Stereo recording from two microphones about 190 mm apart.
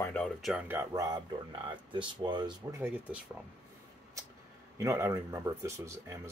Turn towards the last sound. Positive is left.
turn(degrees=-15)  # may be behind; listen again after turning